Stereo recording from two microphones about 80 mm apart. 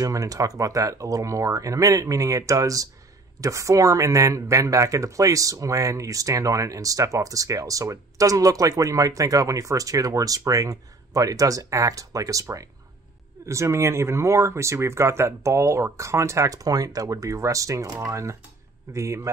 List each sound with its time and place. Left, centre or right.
0.0 s speech: right